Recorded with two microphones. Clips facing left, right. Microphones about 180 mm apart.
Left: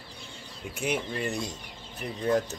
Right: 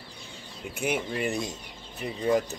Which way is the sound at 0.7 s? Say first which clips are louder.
Right 1 dB; 5° right (ahead or behind).